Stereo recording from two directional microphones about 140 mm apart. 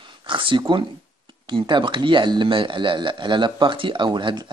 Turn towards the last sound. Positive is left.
turn(degrees=-30)  # may be behind; listen again after turning